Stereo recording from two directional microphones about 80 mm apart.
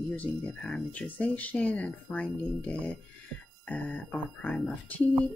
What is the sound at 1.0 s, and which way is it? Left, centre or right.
Speech, centre.